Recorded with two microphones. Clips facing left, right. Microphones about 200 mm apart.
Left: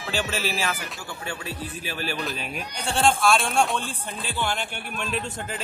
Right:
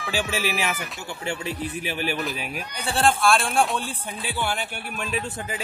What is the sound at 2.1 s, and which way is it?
Speech, 5° right (ahead or behind).